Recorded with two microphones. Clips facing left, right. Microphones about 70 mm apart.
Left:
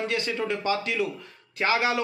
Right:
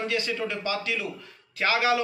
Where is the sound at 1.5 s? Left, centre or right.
Left.